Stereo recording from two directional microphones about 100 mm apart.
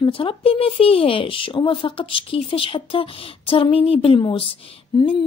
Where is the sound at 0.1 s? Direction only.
65° left (ahead or behind).